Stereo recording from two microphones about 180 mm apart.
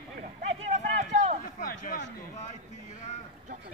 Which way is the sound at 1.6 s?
50° left (ahead or behind).